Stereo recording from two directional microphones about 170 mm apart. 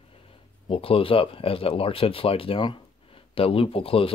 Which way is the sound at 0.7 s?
35° left (ahead or behind).